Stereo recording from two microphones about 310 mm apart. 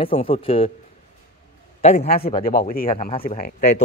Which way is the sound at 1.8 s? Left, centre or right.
Left.